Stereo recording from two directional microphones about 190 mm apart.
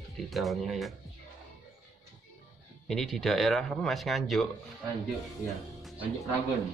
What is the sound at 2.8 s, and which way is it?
Speech, centre (ahead or behind).